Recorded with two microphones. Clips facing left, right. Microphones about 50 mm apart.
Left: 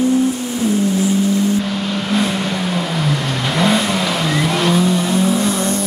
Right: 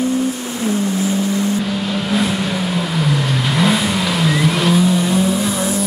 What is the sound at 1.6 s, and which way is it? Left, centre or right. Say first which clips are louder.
Vehicle: even; centre.